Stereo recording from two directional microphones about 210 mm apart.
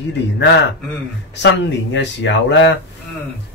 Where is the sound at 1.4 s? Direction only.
60° left (ahead or behind).